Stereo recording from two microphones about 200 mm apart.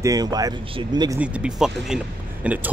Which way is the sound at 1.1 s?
5° right (ahead or behind).